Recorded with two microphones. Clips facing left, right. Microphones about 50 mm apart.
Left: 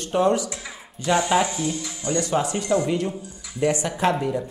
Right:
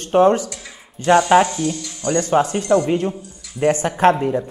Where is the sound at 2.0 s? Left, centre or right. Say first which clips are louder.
Right 6 dB; right.